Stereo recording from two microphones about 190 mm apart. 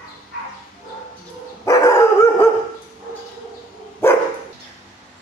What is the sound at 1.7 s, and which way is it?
Dog, 15° left (ahead or behind).